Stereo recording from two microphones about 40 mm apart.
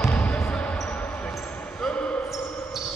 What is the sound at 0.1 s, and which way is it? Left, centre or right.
Basketball bounce, left.